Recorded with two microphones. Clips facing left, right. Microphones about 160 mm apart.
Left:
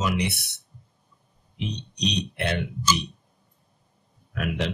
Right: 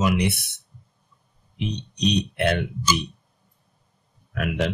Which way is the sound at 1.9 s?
50° right (ahead or behind).